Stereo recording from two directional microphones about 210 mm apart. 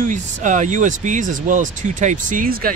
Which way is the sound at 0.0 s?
35° right (ahead or behind).